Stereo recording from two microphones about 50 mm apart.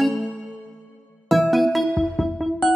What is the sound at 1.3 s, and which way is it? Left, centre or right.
Music, centre.